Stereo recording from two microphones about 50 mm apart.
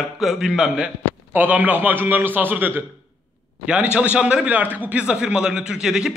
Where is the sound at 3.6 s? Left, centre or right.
Right.